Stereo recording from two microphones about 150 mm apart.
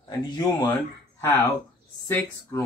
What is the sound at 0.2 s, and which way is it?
Speech, 30° left (ahead or behind).